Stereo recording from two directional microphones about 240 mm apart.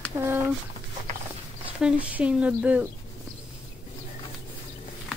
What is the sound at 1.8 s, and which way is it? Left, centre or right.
Speech, centre.